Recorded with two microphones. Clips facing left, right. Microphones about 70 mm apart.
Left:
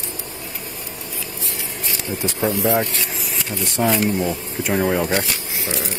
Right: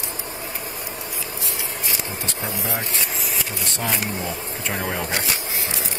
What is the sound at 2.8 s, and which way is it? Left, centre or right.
Speech, right.